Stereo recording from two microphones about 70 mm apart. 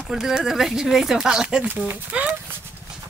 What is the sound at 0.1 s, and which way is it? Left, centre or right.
Speech, centre.